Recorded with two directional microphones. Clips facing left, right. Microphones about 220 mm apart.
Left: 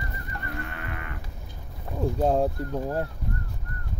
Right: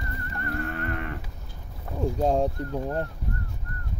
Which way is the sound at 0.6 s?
45° right (ahead or behind).